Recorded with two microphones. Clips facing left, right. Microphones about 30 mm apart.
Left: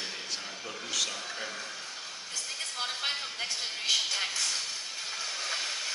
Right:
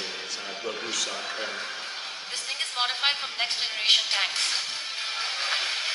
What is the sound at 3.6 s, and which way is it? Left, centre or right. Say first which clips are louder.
Music: right 6 dB; right.